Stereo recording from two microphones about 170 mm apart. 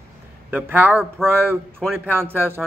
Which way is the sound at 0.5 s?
10° right (ahead or behind).